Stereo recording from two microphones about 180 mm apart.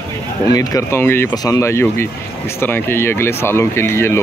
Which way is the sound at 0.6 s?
15° left (ahead or behind).